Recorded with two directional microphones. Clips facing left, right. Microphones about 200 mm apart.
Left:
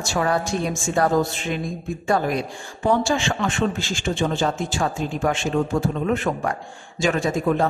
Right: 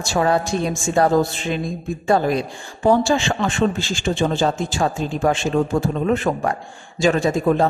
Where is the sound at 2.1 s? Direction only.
30° right (ahead or behind).